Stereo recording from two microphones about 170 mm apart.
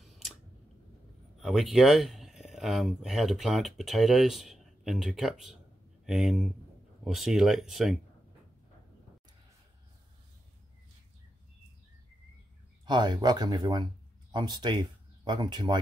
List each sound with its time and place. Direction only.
1.4 s speech: centre (ahead or behind)
12.8 s speech: 25° right (ahead or behind)